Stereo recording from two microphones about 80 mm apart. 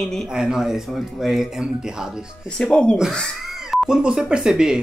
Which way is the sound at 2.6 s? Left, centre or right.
Centre.